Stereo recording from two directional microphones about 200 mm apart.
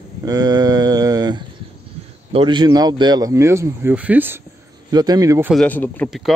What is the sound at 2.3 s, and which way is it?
Speech, 25° right (ahead or behind).